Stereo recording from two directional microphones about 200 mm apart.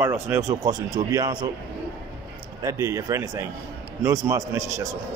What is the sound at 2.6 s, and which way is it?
A man's voice, 15° right (ahead or behind).